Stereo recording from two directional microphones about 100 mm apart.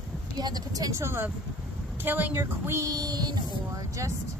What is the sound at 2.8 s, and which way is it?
Speech, 40° right (ahead or behind).